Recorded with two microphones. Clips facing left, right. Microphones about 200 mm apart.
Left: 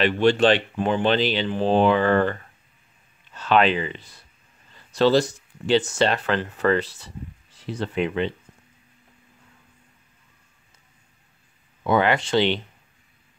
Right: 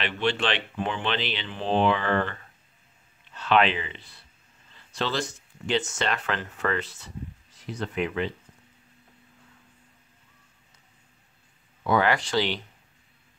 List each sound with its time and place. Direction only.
0.0 s speech: 40° left (ahead or behind)
3.3 s speech: 40° left (ahead or behind)
11.8 s speech: 20° left (ahead or behind)